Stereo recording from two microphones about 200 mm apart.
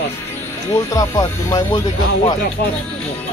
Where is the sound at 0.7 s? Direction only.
15° left (ahead or behind).